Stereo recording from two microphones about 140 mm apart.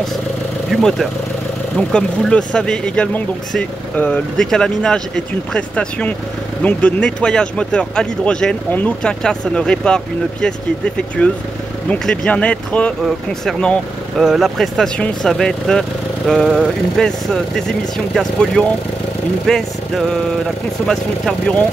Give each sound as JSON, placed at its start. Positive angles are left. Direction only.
{"t": 0.7, "sound": "speech", "side_deg": 0}
{"t": 20.8, "sound": "speech", "side_deg": 5}